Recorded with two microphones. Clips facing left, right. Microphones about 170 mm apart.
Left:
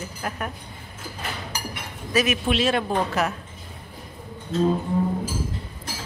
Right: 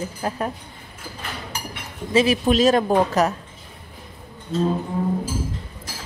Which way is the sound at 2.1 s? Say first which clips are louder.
Right 5 dB; 35° right (ahead or behind).